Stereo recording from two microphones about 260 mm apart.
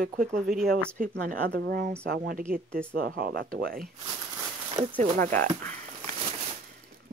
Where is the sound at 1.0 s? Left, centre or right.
Right.